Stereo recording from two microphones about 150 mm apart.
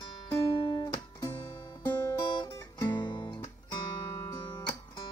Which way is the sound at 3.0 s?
30° left (ahead or behind).